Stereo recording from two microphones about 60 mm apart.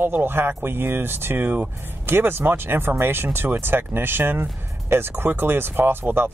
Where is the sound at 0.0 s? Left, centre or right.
Right.